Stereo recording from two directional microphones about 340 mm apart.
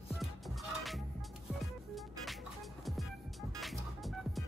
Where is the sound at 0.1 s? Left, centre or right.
Centre.